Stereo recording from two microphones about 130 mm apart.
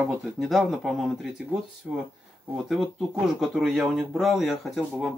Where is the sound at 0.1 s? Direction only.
Centre (ahead or behind).